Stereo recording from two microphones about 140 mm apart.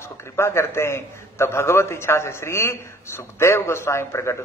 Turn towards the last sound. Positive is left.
turn(degrees=20)  # may be behind; listen again after turning